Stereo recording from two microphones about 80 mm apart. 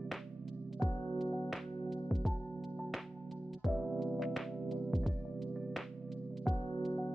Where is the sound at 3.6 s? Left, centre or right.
Centre.